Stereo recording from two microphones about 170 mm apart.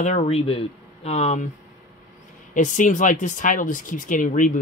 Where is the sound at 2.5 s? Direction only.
45° left (ahead or behind).